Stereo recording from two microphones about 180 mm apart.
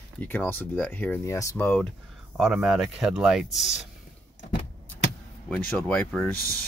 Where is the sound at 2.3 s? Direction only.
5° right (ahead or behind).